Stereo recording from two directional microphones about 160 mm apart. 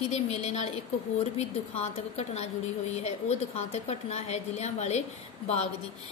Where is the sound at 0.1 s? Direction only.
40° left (ahead or behind).